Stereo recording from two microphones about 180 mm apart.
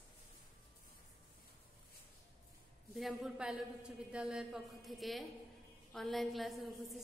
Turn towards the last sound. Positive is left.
turn(degrees=0)  # may be behind; listen again after turning